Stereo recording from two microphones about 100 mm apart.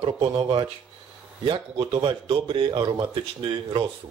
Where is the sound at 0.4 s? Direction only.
55° right (ahead or behind).